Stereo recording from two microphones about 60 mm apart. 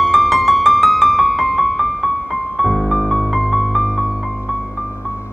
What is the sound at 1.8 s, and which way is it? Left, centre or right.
Music, left.